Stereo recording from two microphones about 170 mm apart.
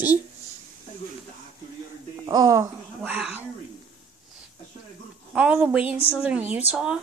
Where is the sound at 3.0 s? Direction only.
10° right (ahead or behind).